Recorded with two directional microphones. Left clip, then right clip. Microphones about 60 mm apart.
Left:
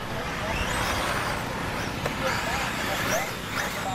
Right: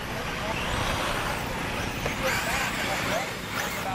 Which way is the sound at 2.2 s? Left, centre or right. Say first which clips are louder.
Right 1 dB; right.